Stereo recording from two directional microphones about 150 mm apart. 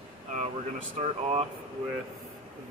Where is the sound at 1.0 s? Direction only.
45° right (ahead or behind).